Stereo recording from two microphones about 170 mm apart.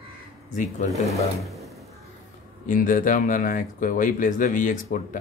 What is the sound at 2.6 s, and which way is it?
Speech, 55° left (ahead or behind).